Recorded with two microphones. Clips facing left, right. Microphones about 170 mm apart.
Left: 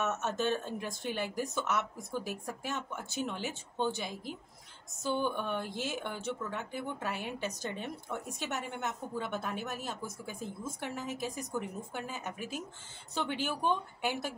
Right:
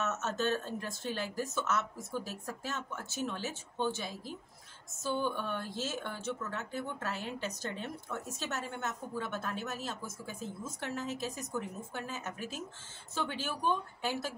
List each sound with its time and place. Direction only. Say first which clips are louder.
0.0 s speech: left 1 dB; 15° left (ahead or behind)